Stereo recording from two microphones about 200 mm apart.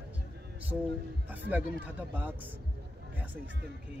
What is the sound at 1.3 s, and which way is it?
Speech, 10° right (ahead or behind).